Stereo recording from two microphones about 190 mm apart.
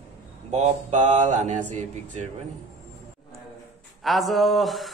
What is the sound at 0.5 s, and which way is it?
Mantra, 35° right (ahead or behind).